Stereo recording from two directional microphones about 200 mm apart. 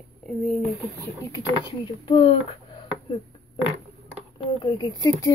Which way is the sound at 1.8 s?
25° left (ahead or behind).